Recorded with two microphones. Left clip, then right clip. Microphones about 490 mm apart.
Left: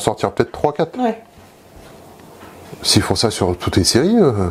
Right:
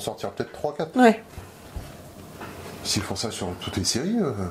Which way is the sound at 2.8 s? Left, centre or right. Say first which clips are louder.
Left 13 dB; left.